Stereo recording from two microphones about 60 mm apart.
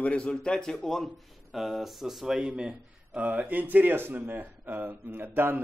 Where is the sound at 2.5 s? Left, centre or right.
Centre.